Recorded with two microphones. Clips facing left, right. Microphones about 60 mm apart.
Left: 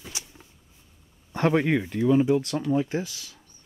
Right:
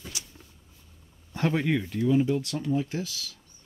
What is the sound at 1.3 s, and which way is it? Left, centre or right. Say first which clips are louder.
Speech: left 4 dB; left.